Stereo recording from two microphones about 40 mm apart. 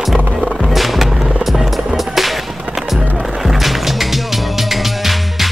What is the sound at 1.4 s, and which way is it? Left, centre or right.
Music, centre.